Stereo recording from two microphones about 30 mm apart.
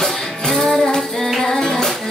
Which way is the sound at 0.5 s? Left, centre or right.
Centre.